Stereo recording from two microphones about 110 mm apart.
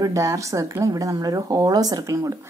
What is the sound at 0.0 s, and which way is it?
A woman's voice, 30° right (ahead or behind).